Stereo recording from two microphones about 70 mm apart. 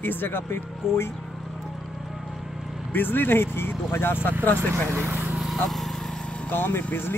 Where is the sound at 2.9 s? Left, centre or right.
Left.